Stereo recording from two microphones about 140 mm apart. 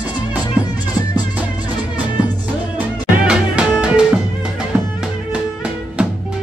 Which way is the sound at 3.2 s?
5° right (ahead or behind).